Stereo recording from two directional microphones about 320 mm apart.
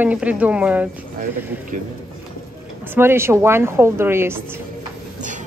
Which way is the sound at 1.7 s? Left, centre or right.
Right.